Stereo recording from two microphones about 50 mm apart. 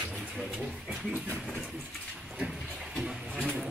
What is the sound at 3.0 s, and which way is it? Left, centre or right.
Speech, centre.